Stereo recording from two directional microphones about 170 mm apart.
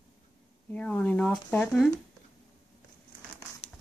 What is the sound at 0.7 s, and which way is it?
Speech, 10° left (ahead or behind).